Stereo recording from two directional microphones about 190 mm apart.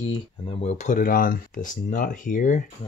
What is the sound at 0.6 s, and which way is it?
Speech, 40° left (ahead or behind).